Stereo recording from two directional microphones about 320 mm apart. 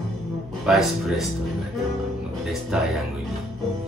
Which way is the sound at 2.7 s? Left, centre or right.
Centre.